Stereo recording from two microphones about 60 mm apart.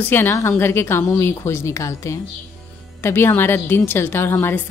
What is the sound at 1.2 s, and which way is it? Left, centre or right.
Speech, left.